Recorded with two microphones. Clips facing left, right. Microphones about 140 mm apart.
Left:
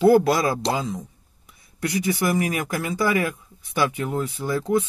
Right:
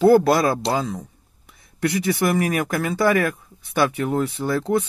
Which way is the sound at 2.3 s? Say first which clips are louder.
Right 3 dB; 55° right (ahead or behind).